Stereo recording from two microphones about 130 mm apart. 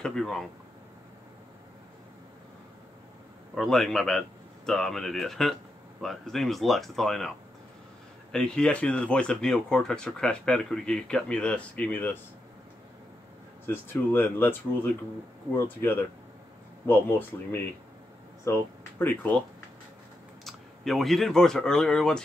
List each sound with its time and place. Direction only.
0.0 s speech: 5° left (ahead or behind)
3.5 s speech: centre (ahead or behind)
13.7 s speech: 15° left (ahead or behind)
18.4 s speech: 20° left (ahead or behind)
20.4 s speech: centre (ahead or behind)